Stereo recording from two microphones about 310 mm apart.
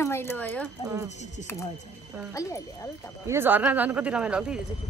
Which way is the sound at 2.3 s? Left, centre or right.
Centre.